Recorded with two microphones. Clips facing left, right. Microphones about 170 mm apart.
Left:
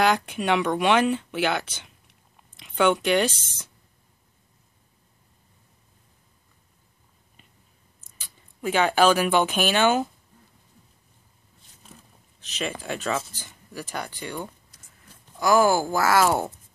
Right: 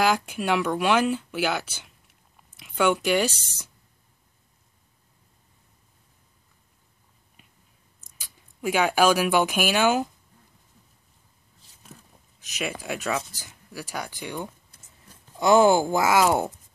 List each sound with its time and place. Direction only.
0.0 s speech: 5° right (ahead or behind)
2.3 s a sound: 5° right (ahead or behind)
8.2 s speech: 10° right (ahead or behind)
12.5 s speech: 10° right (ahead or behind)
15.3 s speech: 25° right (ahead or behind)